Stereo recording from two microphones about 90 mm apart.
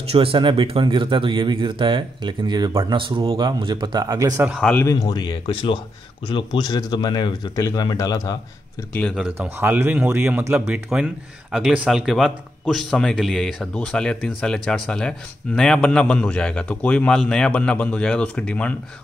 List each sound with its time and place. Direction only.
0.2 s speech: 75° right (ahead or behind); by 2.7 s 55° right (ahead or behind)
2.9 s speech: 70° right (ahead or behind)
3.4 s speech: 60° right (ahead or behind); by 4.4 s 45° right (ahead or behind)
4.8 s speech: 45° left (ahead or behind); by 5.8 s 75° left (ahead or behind)
6.2 s speech: 60° left (ahead or behind)
7.5 s speech: 40° left (ahead or behind)
9.4 s speech: 20° right (ahead or behind); by 18.8 s 15° left (ahead or behind)